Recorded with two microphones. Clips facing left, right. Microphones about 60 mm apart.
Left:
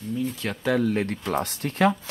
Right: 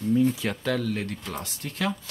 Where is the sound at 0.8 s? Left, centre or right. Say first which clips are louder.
Left 5 dB; left.